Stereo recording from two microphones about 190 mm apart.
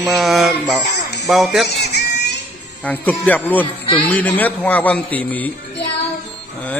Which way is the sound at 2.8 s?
10° left (ahead or behind).